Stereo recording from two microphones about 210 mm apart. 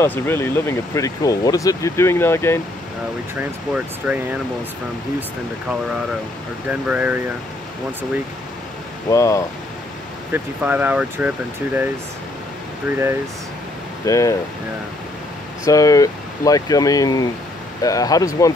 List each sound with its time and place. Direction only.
0.0 s speech: 10° left (ahead or behind)
3.3 s speech: 5° right (ahead or behind)
6.7 s speech: 5° right (ahead or behind)
9.1 s speech: 15° left (ahead or behind)
10.3 s speech: 10° right (ahead or behind)
14.0 s speech: 15° left (ahead or behind)
15.6 s speech: 15° left (ahead or behind)